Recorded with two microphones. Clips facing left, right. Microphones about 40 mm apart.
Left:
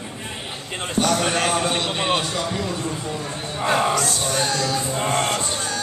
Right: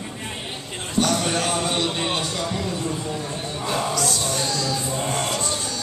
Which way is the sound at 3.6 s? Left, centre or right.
Left.